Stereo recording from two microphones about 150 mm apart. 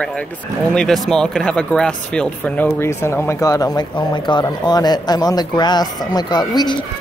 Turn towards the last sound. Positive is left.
turn(degrees=30)  # may be behind; listen again after turning